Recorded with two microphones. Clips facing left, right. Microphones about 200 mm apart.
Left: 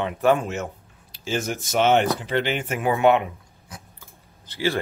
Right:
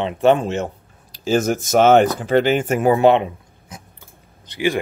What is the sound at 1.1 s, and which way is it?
Speech, 40° right (ahead or behind).